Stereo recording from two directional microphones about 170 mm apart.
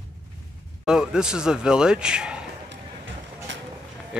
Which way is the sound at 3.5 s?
90° right.